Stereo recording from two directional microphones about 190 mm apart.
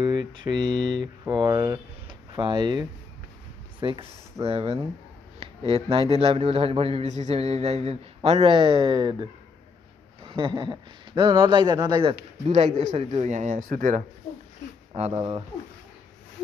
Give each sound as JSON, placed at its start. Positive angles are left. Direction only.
{"t": 0.0, "sound": "a man's voice", "side_deg": -20}
{"t": 15.0, "sound": "speech", "side_deg": -30}